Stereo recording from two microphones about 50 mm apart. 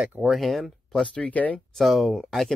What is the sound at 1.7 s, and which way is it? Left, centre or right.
Speech, centre.